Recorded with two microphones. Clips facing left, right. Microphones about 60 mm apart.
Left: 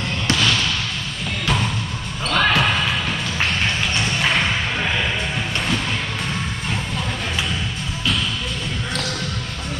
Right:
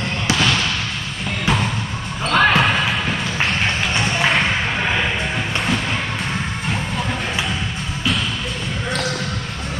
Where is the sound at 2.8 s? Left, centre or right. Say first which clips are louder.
Right 2 dB; centre.